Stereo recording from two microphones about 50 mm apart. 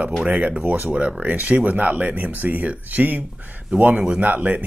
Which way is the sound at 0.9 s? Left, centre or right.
Right.